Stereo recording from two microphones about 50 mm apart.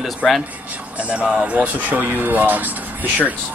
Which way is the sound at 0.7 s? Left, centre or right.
Right.